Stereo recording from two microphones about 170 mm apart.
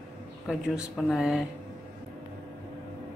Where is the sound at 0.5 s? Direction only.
Centre (ahead or behind).